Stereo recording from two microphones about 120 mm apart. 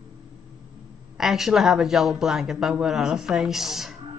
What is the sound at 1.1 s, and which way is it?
Speech, 5° right (ahead or behind).